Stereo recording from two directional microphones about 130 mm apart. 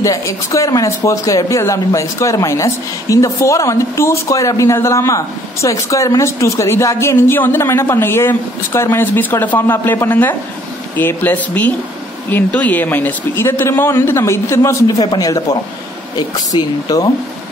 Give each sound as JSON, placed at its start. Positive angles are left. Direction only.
{"t": 0.0, "sound": "speech", "side_deg": 25}